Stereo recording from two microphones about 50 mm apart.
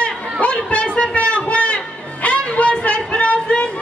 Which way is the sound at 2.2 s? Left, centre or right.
Left.